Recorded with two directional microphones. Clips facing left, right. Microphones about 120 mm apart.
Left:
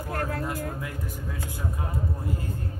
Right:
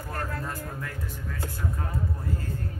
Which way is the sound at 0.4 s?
15° left (ahead or behind).